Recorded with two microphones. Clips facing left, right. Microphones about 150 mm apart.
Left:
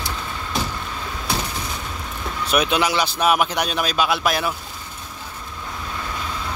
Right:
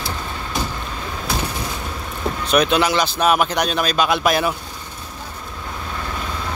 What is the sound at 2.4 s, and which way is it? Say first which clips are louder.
A man's voice: right 3 dB; 5° left (ahead or behind).